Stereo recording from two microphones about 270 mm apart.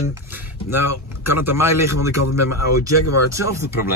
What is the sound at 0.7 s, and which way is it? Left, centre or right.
Speech, left.